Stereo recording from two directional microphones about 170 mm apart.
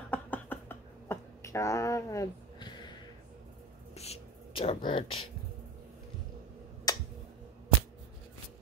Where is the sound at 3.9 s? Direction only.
40° left (ahead or behind).